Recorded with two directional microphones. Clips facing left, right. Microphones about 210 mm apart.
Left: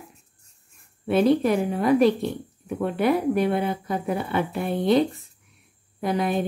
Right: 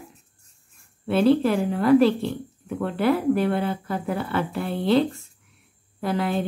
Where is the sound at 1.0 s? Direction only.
15° left (ahead or behind).